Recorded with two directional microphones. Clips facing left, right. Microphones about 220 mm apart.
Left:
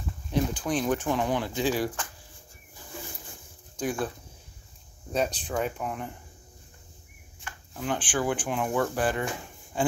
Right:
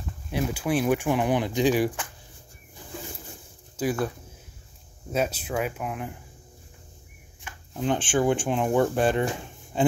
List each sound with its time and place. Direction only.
0.3 s speech: 10° right (ahead or behind)
3.7 s speech: 5° right (ahead or behind)
5.1 s speech: 5° right (ahead or behind)
7.4 s speech: 25° right (ahead or behind)
9.7 s a sound: 25° right (ahead or behind)